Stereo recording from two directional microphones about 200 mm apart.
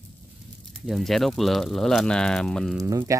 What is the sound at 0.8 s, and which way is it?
Speech, centre (ahead or behind).